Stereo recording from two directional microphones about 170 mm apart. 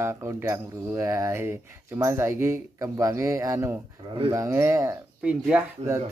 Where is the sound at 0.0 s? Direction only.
15° right (ahead or behind).